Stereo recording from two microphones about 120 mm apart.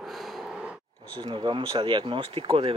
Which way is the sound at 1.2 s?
40° right (ahead or behind).